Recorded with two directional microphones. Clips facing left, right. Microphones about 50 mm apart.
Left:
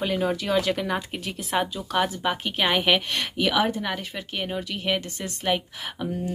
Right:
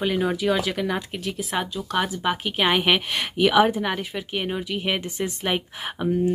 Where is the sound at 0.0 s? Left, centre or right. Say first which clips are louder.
Right 2 dB; centre.